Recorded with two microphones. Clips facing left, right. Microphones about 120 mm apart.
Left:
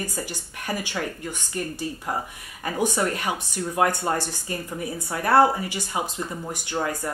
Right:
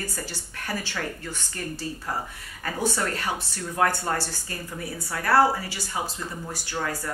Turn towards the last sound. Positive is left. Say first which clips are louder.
# left 3 dB
turn(degrees=20)  # may be behind; listen again after turning